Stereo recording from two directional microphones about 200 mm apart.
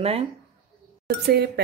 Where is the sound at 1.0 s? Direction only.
55° right (ahead or behind).